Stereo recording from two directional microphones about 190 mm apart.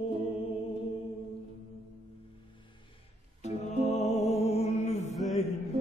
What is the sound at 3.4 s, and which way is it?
Music, 35° left (ahead or behind).